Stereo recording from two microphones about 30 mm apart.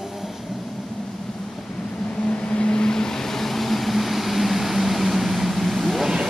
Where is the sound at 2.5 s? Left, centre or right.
Left.